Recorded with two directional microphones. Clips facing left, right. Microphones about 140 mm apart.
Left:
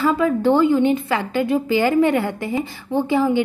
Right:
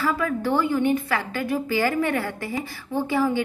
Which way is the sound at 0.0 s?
25° left (ahead or behind).